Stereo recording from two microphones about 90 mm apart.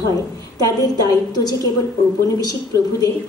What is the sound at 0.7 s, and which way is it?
A woman's voice, 45° left (ahead or behind).